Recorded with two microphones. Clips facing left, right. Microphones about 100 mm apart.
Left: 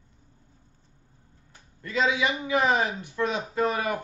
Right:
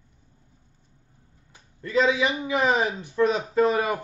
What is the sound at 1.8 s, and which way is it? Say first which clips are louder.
Speech: right 3 dB; 35° right (ahead or behind).